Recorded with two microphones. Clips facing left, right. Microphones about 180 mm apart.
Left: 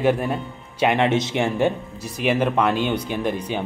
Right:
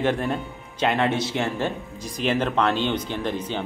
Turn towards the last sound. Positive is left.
turn(degrees=10)  # may be behind; listen again after turning